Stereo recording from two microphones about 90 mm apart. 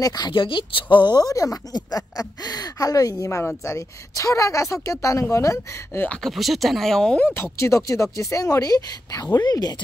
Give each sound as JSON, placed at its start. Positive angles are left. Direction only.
{"t": 0.0, "sound": "speech", "side_deg": 45}
{"t": 0.3, "sound": "speech", "side_deg": 70}
{"t": 6.2, "sound": "speech", "side_deg": 0}
{"t": 7.2, "sound": "speech", "side_deg": 25}
{"t": 7.5, "sound": "speech", "side_deg": 35}